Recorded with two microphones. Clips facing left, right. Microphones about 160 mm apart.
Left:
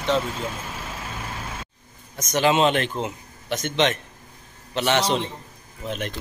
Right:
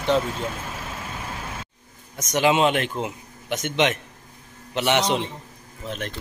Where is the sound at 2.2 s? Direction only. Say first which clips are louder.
Even; 10° right (ahead or behind).